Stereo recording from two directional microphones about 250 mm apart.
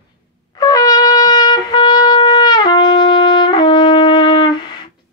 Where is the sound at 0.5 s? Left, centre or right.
Centre.